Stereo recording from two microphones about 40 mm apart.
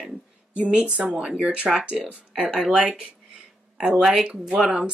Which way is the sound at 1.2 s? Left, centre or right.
Centre.